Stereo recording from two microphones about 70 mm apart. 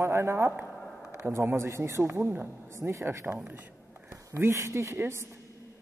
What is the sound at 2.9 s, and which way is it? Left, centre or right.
A man's voice, right.